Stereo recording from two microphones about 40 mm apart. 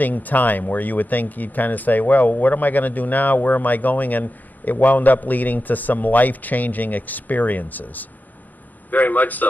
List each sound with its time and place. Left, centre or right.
0.0 s speech: left